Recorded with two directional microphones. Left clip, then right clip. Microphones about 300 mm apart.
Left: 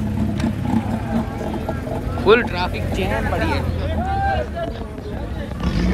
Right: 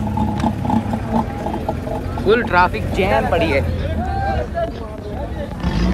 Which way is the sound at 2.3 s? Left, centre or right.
Centre.